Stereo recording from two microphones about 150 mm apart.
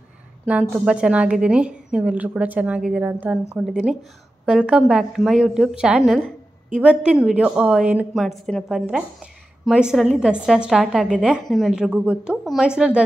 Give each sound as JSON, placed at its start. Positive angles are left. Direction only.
{"t": 0.5, "sound": "a woman's voice", "side_deg": -10}